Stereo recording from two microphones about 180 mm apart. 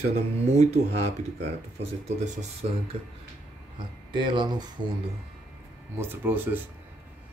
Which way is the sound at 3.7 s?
25° right (ahead or behind).